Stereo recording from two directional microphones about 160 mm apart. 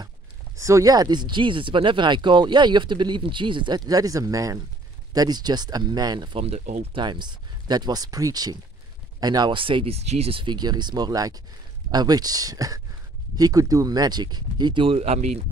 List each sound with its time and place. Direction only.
0.6 s speech: 20° right (ahead or behind); by 6.6 s 35° right (ahead or behind)
6.6 s speech: 50° right (ahead or behind)
6.9 s speech: 30° right (ahead or behind)